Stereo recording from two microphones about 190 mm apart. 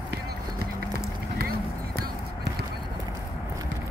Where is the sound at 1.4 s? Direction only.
50° right (ahead or behind).